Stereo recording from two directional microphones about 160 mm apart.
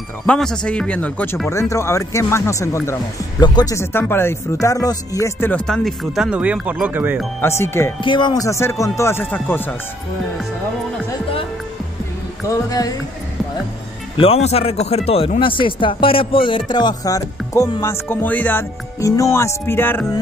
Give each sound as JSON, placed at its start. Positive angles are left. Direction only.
{"t": 0.3, "sound": "speech", "side_deg": 5}
{"t": 5.7, "sound": "speech", "side_deg": 0}
{"t": 7.4, "sound": "speech", "side_deg": 15}
{"t": 8.0, "sound": "speech", "side_deg": 30}
{"t": 12.6, "sound": "speech", "side_deg": 25}
{"t": 14.1, "sound": "a man's voice", "side_deg": 35}